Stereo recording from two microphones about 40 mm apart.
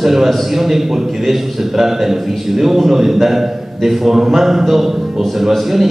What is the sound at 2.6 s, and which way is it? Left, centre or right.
A man's voice, centre.